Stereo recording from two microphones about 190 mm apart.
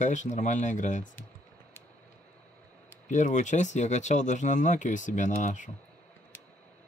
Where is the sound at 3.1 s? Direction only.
40° left (ahead or behind).